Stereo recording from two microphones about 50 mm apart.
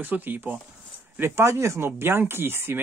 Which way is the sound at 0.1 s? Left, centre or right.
Right.